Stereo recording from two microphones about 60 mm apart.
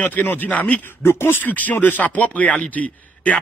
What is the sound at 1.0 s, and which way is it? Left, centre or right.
A man's voice, left.